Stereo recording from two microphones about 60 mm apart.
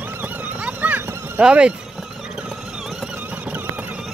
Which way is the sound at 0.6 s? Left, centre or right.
Right.